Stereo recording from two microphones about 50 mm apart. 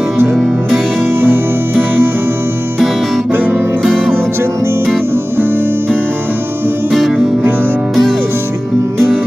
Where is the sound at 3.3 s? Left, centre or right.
Right.